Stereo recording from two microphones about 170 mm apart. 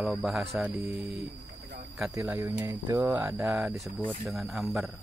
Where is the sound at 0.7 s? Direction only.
10° right (ahead or behind).